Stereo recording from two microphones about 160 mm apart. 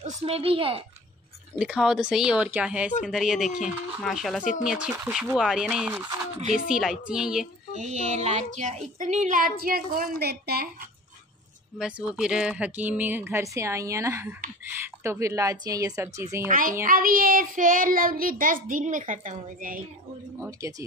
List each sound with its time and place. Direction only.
0.0 s a child's voice: 40° right (ahead or behind)
1.6 s speech: 5° right (ahead or behind)
7.7 s speech: 45° right (ahead or behind)
8.5 s child singing: 50° right (ahead or behind); by 10.9 s 75° right (ahead or behind)
11.8 s speech: 5° right (ahead or behind)
16.4 s child singing: 60° right (ahead or behind)
20.3 s speech: 15° right (ahead or behind)